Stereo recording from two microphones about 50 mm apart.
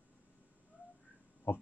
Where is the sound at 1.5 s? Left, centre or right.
Left.